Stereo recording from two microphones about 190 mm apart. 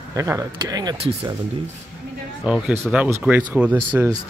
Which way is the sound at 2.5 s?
5° right (ahead or behind).